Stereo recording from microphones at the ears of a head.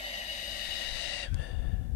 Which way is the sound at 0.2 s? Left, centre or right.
Left.